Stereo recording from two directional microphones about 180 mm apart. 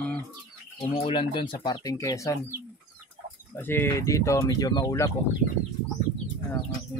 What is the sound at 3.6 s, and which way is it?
Speech, 15° left (ahead or behind).